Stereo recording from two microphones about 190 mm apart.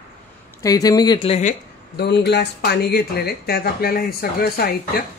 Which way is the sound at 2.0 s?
60° left (ahead or behind).